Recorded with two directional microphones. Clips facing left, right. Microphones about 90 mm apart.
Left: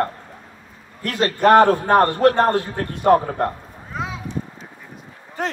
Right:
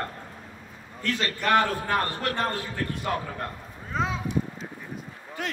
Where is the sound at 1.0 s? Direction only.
55° left (ahead or behind).